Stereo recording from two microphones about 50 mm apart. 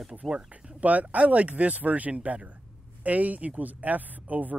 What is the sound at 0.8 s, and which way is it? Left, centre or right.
Speech, right.